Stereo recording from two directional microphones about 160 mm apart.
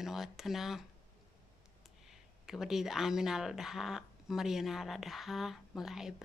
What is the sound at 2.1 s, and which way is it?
Speech, centre (ahead or behind).